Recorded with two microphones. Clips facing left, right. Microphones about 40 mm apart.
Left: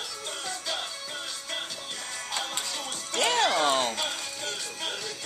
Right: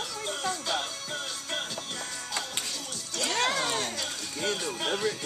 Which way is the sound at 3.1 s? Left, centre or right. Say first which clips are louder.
Left 4 dB; left.